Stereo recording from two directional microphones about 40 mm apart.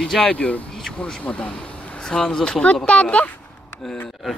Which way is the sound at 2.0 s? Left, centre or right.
Centre.